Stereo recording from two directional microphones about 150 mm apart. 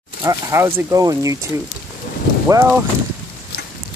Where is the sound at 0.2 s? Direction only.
20° right (ahead or behind).